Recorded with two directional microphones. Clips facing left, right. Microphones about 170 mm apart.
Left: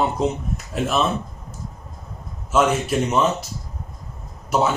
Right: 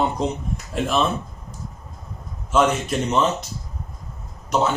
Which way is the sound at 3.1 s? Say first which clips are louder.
Right 2 dB; 10° left (ahead or behind).